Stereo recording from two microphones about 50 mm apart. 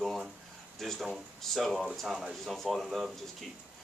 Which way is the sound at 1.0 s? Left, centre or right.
Centre.